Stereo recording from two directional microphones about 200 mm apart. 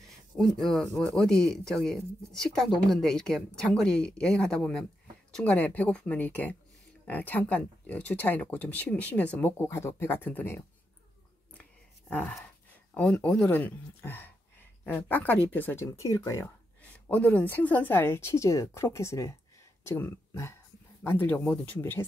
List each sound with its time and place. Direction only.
0.4 s speech: centre (ahead or behind)
12.1 s speech: 5° left (ahead or behind)